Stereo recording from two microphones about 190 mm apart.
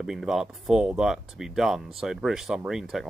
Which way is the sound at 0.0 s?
Centre (ahead or behind).